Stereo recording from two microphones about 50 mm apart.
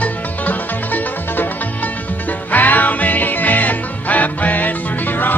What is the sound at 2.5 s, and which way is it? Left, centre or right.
Music, left.